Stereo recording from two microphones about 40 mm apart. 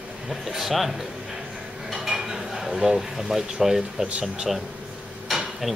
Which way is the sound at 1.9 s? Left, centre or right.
Centre.